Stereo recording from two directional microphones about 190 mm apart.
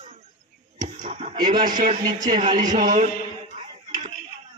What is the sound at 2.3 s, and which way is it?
Speech, 35° right (ahead or behind).